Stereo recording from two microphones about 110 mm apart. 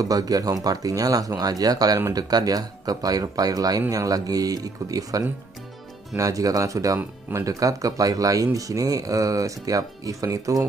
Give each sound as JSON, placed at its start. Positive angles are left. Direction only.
{"t": 0.0, "sound": "speech", "side_deg": -35}
{"t": 7.0, "sound": "speech", "side_deg": -20}
{"t": 7.4, "sound": "speech", "side_deg": -30}